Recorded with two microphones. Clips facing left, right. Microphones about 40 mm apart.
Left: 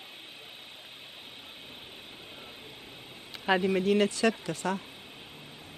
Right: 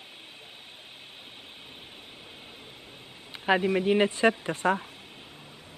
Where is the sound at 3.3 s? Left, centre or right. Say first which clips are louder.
Right 2 dB; centre; by 4.8 s right.